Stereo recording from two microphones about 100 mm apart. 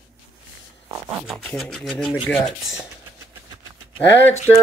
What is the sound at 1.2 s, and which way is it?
Speech, 5° left (ahead or behind).